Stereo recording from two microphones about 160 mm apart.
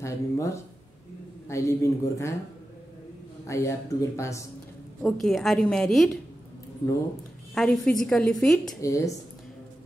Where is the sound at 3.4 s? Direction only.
20° left (ahead or behind).